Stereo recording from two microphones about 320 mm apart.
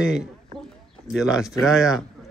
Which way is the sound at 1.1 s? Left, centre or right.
Centre.